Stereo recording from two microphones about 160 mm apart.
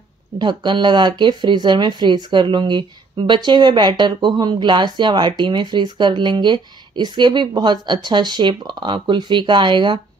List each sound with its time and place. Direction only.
0.4 s speech: 30° right (ahead or behind)